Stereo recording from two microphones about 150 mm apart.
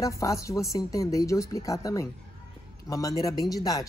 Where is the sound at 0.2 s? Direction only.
20° left (ahead or behind).